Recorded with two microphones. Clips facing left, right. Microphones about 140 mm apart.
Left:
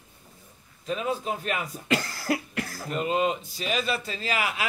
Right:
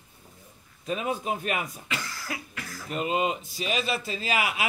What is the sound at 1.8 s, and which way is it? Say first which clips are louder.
Cough: left 8 dB; 45° left (ahead or behind).